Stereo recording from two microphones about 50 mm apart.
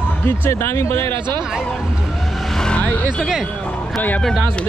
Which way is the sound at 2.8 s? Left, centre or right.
Left.